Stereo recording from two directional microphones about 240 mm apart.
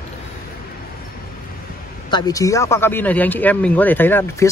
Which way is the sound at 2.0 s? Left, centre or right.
Centre.